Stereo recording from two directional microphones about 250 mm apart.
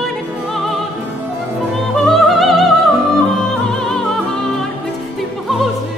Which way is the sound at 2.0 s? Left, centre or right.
Centre.